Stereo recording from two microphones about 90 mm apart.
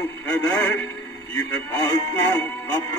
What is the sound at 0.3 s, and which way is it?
Synthetic singing, 25° left (ahead or behind).